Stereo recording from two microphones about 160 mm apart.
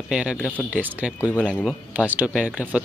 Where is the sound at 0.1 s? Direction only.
5° right (ahead or behind).